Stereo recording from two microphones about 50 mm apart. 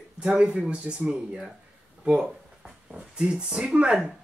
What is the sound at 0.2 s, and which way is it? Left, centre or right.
Speech, right.